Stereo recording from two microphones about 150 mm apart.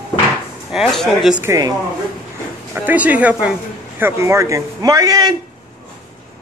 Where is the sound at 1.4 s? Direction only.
20° right (ahead or behind).